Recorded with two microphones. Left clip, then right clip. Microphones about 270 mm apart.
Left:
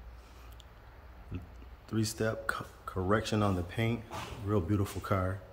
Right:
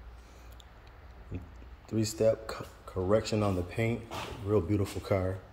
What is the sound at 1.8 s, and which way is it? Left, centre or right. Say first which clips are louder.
Speech: right 6 dB; centre.